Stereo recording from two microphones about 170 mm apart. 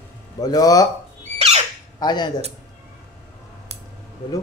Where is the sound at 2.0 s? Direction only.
25° left (ahead or behind).